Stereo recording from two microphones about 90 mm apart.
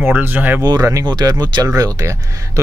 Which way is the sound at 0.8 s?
30° right (ahead or behind).